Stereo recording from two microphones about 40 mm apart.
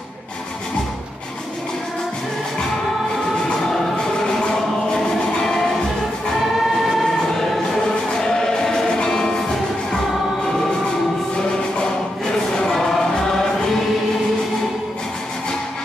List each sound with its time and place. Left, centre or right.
4.3 s music: centre
7.0 s choir: centre
9.0 s music: left
12.3 s choir: centre